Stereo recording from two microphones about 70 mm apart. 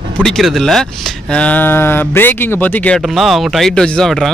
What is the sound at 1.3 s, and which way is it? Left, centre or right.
Speech, centre.